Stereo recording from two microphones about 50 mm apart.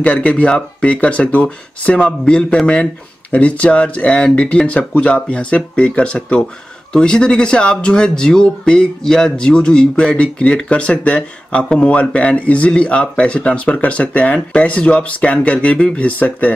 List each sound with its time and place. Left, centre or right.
0.0 s speech: left
2.0 s speech: centre